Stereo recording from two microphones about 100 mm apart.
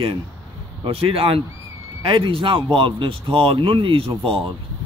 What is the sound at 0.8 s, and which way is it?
Speech, 70° right (ahead or behind).